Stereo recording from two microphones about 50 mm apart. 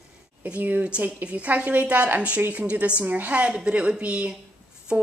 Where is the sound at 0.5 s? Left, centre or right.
Right.